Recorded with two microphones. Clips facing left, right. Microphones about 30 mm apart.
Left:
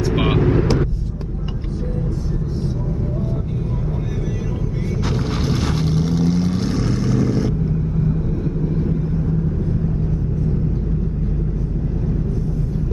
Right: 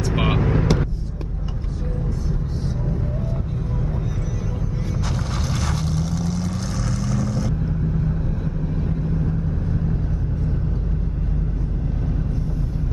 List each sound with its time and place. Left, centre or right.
0.1 s vehicle: centre
5.5 s vehicle: left
8.7 s vehicle: centre